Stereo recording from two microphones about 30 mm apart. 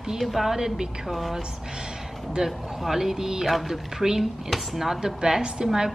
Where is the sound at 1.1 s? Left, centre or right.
Centre.